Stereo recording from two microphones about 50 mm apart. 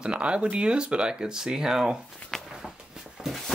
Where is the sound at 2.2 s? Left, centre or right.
Left.